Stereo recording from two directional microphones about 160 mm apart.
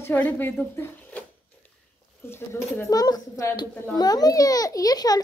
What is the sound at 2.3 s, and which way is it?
A child's voice, 15° left (ahead or behind).